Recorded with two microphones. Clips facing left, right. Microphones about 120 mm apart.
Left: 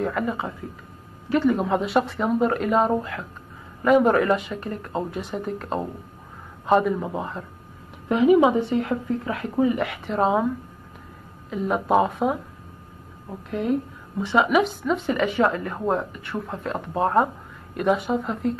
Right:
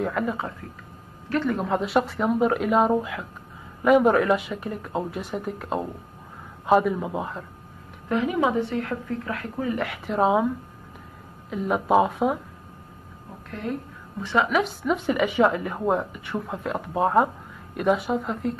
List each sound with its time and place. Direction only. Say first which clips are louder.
0.0 s speech: left 1 dB; centre (ahead or behind)
8.1 s a woman's voice: left 6 dB; 15° left (ahead or behind)
9.8 s speech: even; centre (ahead or behind)
11.5 s speech: even; centre (ahead or behind)
13.5 s a woman's voice: left 7 dB; 10° left (ahead or behind)
14.6 s speech: left 2 dB; 5° right (ahead or behind)